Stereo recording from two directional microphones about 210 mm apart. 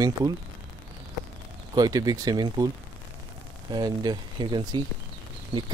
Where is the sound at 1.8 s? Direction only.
20° right (ahead or behind).